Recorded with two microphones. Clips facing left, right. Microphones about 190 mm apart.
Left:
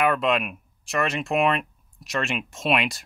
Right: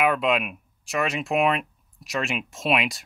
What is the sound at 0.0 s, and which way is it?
Speech, centre (ahead or behind).